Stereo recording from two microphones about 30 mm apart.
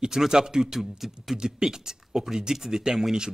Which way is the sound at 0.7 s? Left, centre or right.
Centre.